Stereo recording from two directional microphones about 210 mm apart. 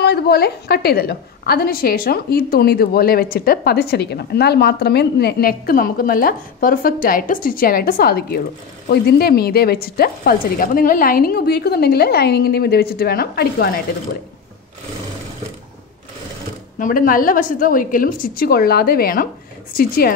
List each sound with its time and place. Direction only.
0.0 s a woman's voice: 50° left (ahead or behind)
16.7 s a woman's voice: 40° left (ahead or behind)